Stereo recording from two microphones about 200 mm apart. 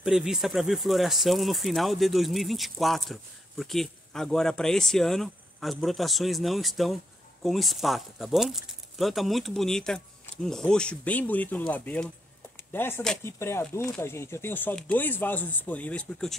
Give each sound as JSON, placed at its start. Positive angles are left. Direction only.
{"t": 0.0, "sound": "speech", "side_deg": -5}